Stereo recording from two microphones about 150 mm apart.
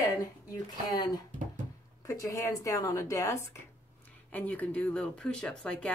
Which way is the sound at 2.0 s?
20° left (ahead or behind).